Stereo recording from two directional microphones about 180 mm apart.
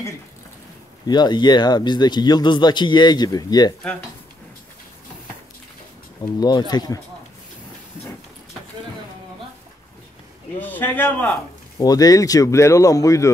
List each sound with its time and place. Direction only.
1.0 s speech: 25° left (ahead or behind)
6.2 s speech: 25° left (ahead or behind)
10.6 s a man's voice: 10° left (ahead or behind)
11.8 s speech: 20° left (ahead or behind)